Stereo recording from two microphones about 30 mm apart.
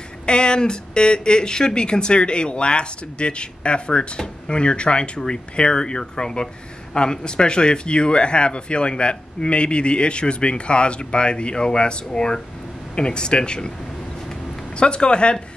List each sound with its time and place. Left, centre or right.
0.3 s speech: left
14.8 s speech: left